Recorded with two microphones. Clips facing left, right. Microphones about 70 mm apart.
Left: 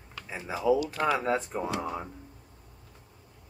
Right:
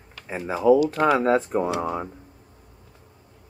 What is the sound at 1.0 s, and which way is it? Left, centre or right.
Speech, right.